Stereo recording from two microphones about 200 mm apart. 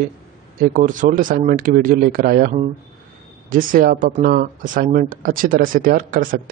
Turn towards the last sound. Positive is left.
turn(degrees=-45)  # may be behind; listen again after turning